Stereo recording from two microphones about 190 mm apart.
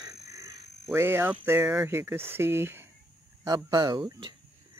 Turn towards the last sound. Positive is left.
turn(degrees=-25)  # may be behind; listen again after turning